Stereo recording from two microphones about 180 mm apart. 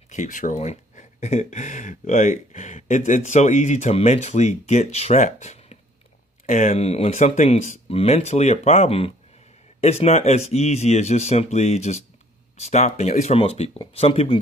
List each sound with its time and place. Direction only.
0.1 s speech: 45° left (ahead or behind)